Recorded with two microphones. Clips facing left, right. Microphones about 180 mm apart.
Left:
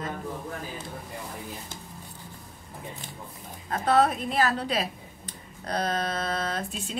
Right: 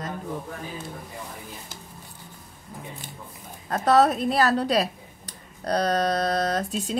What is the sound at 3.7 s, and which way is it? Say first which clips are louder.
Speech: right 3 dB; 40° right (ahead or behind).